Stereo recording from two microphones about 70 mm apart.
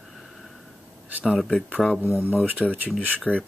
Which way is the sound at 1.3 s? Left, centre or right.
Centre.